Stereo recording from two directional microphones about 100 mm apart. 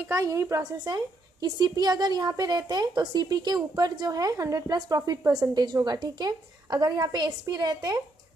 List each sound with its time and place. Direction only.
0.1 s a woman's voice: 35° right (ahead or behind)